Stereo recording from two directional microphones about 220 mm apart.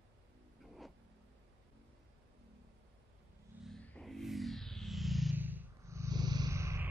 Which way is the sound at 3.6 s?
5° left (ahead or behind).